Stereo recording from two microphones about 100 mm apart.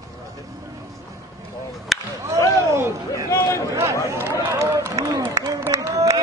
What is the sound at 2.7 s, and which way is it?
Speech, 30° right (ahead or behind).